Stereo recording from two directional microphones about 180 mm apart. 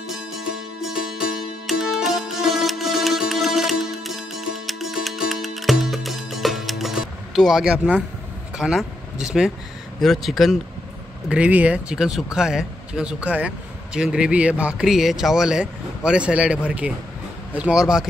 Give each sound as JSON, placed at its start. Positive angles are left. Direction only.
{"t": 0.1, "sound": "music", "side_deg": 0}
{"t": 8.5, "sound": "speech", "side_deg": -5}